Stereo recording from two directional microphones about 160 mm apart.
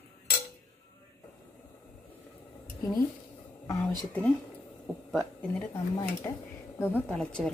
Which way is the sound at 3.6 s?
20° left (ahead or behind).